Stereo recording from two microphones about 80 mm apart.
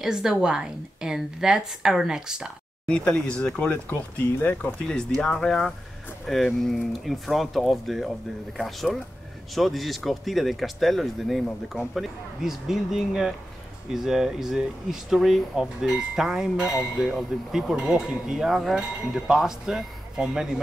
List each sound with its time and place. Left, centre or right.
0.0 s a woman's voice: centre
2.9 s speech: centre
4.4 s a woman's voice: left; by 20.6 s centre